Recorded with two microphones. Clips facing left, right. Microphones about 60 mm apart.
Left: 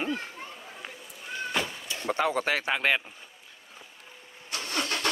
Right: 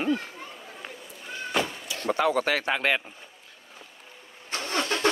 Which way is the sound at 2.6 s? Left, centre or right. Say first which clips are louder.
Right 1 dB; centre.